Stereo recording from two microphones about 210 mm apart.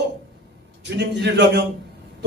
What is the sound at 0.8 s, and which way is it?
Speech, 55° right (ahead or behind).